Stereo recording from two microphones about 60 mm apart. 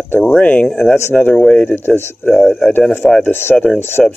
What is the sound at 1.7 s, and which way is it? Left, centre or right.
Speech, left.